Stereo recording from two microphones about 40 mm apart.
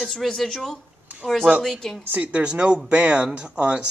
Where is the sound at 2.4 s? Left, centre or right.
Right.